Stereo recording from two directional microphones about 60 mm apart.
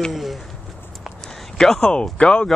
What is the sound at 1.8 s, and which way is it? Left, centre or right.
Speech, centre.